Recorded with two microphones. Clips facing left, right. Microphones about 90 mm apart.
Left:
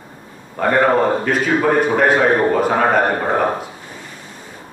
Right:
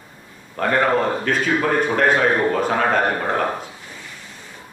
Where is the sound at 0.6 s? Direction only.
5° left (ahead or behind).